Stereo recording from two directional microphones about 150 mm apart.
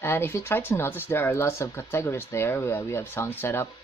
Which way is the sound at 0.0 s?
15° left (ahead or behind).